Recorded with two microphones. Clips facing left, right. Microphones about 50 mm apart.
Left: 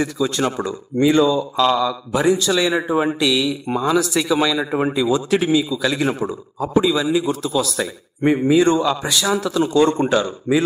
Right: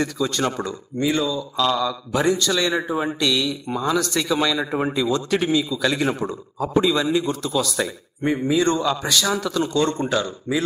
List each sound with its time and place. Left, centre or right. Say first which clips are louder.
0.0 s a man's voice: left 2 dB; centre
0.9 s speech: left 7 dB; left
1.6 s a man's voice: left 2 dB; centre
3.2 s a man's voice: left 3 dB; centre
8.2 s a man's voice: left 5 dB; centre